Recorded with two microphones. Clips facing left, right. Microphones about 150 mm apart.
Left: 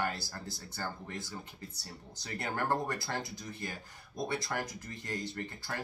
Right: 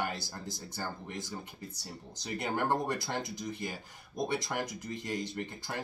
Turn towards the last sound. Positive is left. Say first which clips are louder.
# right 1 dB
turn(degrees=-15)  # may be behind; listen again after turning